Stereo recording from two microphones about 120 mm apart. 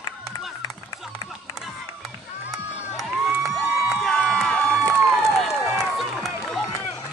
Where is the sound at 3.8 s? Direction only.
5° right (ahead or behind).